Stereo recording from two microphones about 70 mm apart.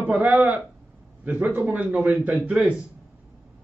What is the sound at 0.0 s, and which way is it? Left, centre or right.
Speech, right.